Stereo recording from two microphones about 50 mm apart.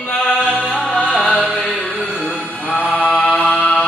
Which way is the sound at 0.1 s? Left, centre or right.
Left.